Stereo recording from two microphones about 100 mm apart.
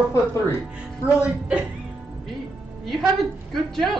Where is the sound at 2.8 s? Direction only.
Centre (ahead or behind).